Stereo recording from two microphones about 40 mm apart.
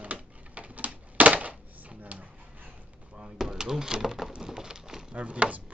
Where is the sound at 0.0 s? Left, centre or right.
Right.